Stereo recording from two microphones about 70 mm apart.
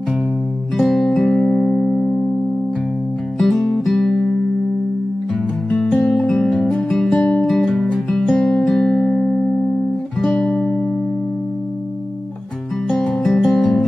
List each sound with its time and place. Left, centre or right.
0.7 s music: centre
3.3 s music: centre
5.9 s music: centre
7.4 s music: centre
10.3 s guitar: centre
12.8 s music: centre